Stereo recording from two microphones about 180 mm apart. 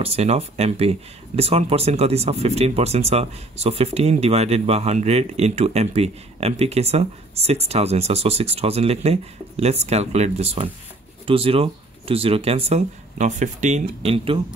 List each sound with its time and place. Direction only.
0.0 s speech: 35° right (ahead or behind)